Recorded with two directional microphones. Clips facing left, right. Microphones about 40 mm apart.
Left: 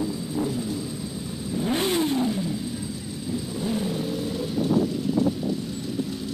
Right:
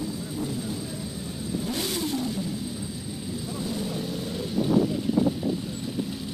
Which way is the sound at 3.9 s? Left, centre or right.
Centre.